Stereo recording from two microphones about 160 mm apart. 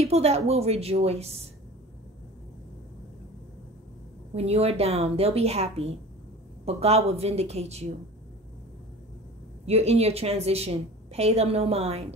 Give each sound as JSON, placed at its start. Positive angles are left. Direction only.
{"t": 0.0, "sound": "a woman's voice", "side_deg": -40}
{"t": 4.4, "sound": "a woman's voice", "side_deg": -40}
{"t": 9.7, "sound": "a woman's voice", "side_deg": -40}